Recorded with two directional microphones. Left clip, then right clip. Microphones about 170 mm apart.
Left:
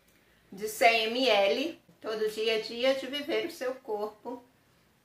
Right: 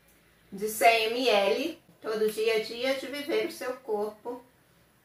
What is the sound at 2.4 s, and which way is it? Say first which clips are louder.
Speech: even; 20° left (ahead or behind).